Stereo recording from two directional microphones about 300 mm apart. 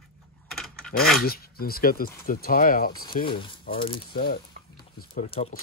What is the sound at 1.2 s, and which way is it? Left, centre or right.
Speech, left.